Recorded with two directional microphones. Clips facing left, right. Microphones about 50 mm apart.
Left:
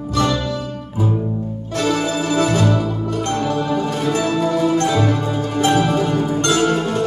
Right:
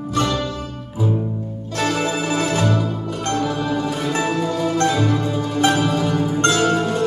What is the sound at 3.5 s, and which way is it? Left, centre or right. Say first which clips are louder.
Music: left 2 dB; centre.